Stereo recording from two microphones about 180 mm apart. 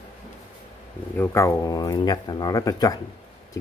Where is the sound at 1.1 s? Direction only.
15° left (ahead or behind).